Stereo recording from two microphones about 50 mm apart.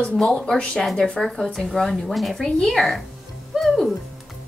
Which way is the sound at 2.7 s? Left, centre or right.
Centre.